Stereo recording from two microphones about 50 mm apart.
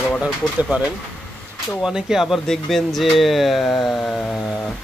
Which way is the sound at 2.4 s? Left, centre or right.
Centre.